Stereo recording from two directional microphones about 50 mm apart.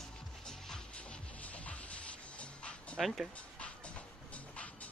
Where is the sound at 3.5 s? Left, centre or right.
Left.